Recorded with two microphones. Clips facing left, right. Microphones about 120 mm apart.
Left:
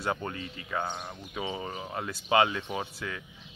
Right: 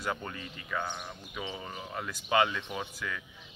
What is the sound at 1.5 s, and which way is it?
Speech, 15° left (ahead or behind).